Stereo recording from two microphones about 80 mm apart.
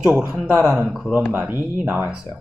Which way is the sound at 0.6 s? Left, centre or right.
Centre.